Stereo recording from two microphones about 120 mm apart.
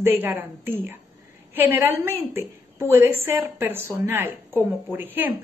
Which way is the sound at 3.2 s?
20° right (ahead or behind).